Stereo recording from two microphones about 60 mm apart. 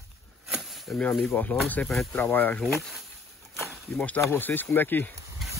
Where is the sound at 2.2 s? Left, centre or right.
Left.